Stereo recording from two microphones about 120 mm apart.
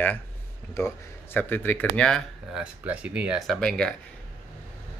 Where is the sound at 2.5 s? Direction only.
10° right (ahead or behind).